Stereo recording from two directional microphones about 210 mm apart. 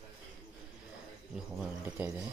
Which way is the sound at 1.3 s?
5° right (ahead or behind).